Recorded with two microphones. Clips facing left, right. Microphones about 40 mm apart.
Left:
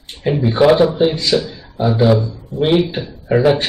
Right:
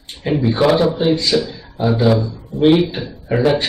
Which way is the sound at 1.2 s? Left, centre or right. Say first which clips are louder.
Even; left.